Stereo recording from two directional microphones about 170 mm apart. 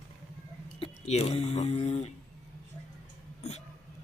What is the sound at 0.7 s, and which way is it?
Speech, 35° left (ahead or behind).